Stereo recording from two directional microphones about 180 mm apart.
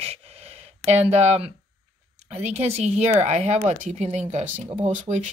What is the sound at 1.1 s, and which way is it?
Speech, 40° right (ahead or behind).